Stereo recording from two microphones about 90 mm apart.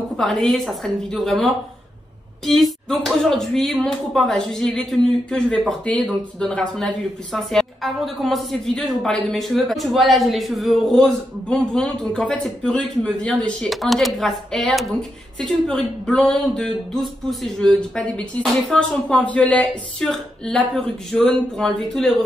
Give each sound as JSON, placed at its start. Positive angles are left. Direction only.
{"t": 0.2, "sound": "speech", "side_deg": 0}
{"t": 13.7, "sound": "speech", "side_deg": 0}